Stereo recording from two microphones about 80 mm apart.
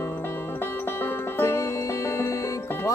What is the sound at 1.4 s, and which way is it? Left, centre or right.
Music, left.